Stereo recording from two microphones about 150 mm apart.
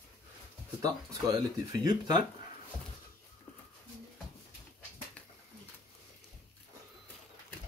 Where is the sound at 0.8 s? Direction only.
25° right (ahead or behind).